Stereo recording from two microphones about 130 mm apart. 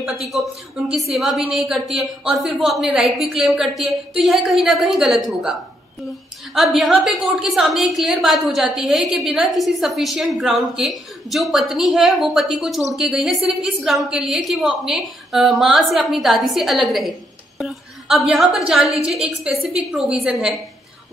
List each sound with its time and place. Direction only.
0.0 s a man's voice: centre (ahead or behind)
17.6 s a sound: centre (ahead or behind)
18.7 s a woman's voice: centre (ahead or behind)